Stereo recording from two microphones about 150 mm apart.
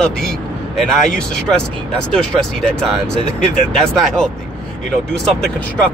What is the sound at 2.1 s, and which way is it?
Speech, 5° left (ahead or behind).